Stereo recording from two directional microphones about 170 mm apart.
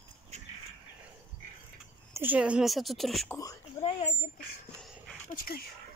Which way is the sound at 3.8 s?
35° left (ahead or behind).